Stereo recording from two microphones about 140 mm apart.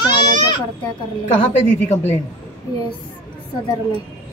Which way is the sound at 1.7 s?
55° left (ahead or behind).